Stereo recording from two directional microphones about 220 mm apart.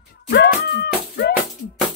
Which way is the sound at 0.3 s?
45° left (ahead or behind).